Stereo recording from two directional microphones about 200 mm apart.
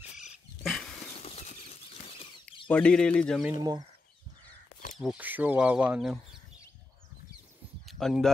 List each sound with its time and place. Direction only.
2.7 s speech: 5° left (ahead or behind)
3.5 s speech: 20° right (ahead or behind)
4.9 s speech: 5° right (ahead or behind)
7.8 s a sound: centre (ahead or behind)